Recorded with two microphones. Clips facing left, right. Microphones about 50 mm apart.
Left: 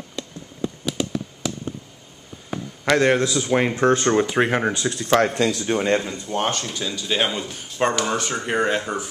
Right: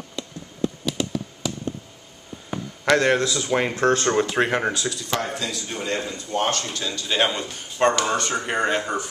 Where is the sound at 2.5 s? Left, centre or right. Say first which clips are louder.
Right 1 dB; centre.